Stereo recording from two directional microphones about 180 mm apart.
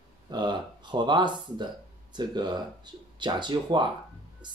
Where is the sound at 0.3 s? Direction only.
25° right (ahead or behind).